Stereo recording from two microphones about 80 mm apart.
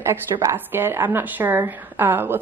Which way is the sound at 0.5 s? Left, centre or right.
Right.